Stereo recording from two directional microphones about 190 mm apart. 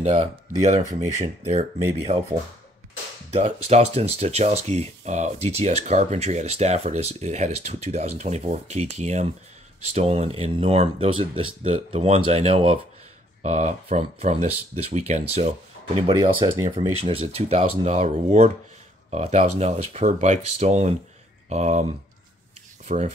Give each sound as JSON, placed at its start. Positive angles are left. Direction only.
{"t": 0.0, "sound": "speech", "side_deg": -35}
{"t": 22.8, "sound": "speech", "side_deg": -35}